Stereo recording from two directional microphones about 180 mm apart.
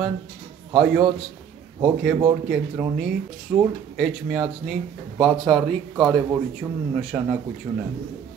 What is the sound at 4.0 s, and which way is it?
Speech, centre (ahead or behind).